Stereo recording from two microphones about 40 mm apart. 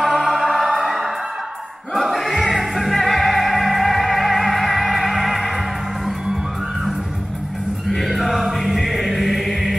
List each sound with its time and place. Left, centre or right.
0.0 s music: centre
7.9 s music: centre